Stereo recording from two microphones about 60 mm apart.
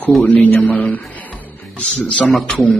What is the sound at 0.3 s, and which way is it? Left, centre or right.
A man's voice, left.